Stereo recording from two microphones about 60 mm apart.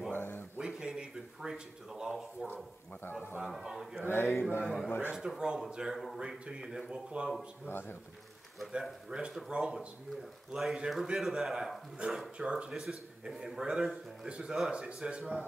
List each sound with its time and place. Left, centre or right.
0.1 s a sound: left
0.6 s a man's voice: centre
3.4 s a man's voice: centre
4.1 s speech: left
4.6 s a man's voice: centre
7.7 s speech: left
9.1 s a man's voice: centre
12.4 s a man's voice: centre
13.3 s a man's voice: centre